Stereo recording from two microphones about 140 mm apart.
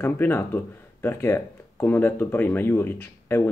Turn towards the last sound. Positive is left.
turn(degrees=15)  # may be behind; listen again after turning